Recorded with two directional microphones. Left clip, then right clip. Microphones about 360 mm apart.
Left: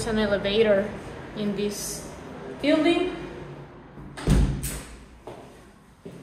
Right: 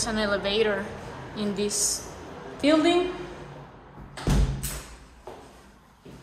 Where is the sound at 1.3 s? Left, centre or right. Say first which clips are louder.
Even; centre.